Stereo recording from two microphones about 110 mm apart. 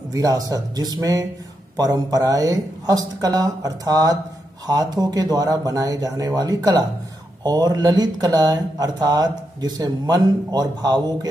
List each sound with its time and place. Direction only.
0.1 s speech: 35° right (ahead or behind)